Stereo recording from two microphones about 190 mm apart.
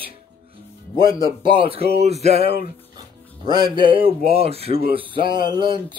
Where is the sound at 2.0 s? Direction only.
35° right (ahead or behind).